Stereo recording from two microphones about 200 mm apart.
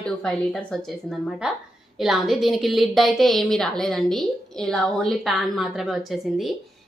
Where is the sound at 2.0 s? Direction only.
Centre (ahead or behind).